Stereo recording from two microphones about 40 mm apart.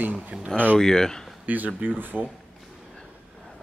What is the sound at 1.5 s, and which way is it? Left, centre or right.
Speech, right.